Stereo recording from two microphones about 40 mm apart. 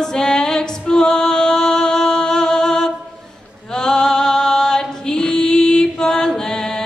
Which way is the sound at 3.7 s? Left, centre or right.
Centre.